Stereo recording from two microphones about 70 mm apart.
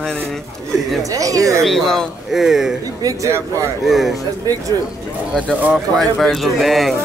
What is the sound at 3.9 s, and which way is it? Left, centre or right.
Speech, centre.